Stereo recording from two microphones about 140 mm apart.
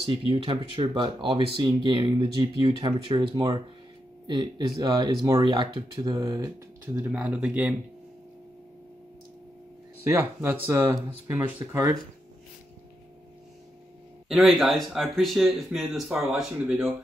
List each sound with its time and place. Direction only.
0.1 s speech: 40° right (ahead or behind); by 6.5 s 25° right (ahead or behind)
7.0 s speech: 10° right (ahead or behind)
10.0 s speech: 15° right (ahead or behind)
14.3 s speech: centre (ahead or behind)